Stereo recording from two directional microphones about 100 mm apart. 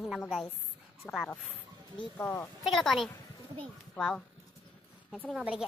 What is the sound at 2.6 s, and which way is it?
A child's voice, centre (ahead or behind).